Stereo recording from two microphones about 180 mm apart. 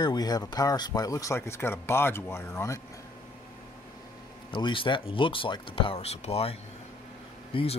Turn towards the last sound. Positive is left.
turn(degrees=30)  # may be behind; listen again after turning